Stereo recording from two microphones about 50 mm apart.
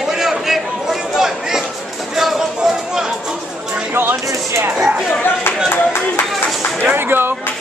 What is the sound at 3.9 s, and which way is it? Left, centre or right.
Speech, right.